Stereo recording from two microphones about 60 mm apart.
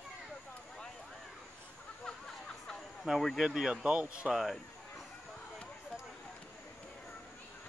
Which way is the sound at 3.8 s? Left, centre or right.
Centre.